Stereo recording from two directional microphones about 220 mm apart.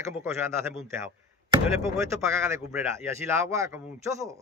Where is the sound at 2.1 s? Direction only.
15° right (ahead or behind).